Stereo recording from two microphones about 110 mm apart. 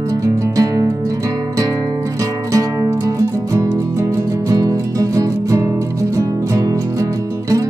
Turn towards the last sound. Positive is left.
turn(degrees=-30)  # may be behind; listen again after turning